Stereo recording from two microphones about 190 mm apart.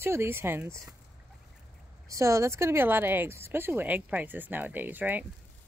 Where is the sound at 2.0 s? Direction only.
15° right (ahead or behind).